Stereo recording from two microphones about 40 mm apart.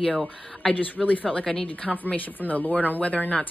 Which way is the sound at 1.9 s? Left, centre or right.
Left.